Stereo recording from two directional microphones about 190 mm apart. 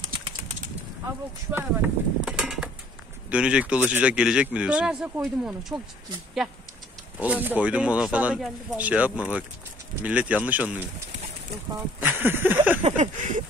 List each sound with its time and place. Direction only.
0.0 s typing: 25° right (ahead or behind)
1.5 s speech: 10° right (ahead or behind)
7.2 s speech: 10° right (ahead or behind)
12.0 s speech: 10° right (ahead or behind)
12.8 s a sound: 40° right (ahead or behind)